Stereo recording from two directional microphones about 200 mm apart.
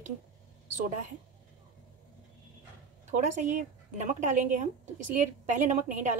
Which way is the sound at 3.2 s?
40° right (ahead or behind).